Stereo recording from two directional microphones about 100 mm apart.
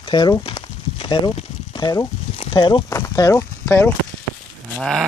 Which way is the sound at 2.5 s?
55° left (ahead or behind).